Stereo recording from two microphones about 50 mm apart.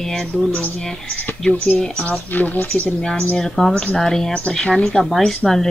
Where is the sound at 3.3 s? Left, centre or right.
Centre.